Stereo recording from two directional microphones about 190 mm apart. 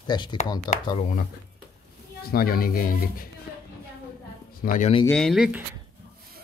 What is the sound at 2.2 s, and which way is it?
Speech, 50° left (ahead or behind).